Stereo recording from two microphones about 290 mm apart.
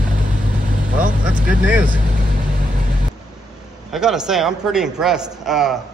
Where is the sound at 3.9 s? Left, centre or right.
Centre.